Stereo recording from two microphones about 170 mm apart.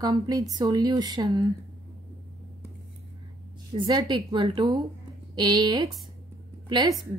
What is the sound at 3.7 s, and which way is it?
A woman's voice, 25° right (ahead or behind).